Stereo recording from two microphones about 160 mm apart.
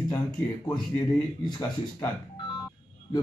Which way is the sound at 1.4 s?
30° left (ahead or behind).